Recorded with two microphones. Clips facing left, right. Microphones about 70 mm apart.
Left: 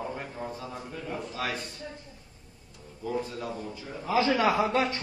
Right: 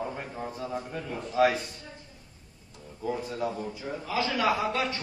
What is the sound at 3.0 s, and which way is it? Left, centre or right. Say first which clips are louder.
Speech: even; right.